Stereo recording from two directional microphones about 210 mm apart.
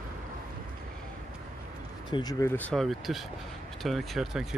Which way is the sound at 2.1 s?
20° left (ahead or behind).